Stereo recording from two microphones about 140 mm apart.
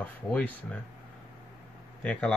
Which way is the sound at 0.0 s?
10° left (ahead or behind).